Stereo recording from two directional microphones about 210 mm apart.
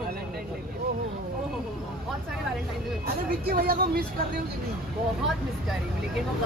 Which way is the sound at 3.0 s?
50° right (ahead or behind).